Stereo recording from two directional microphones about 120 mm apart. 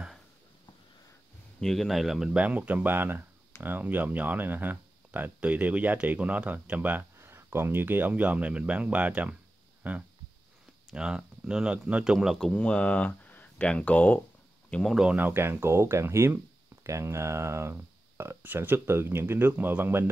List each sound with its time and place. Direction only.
1.6 s speech: centre (ahead or behind)
15.1 s speech: 15° right (ahead or behind)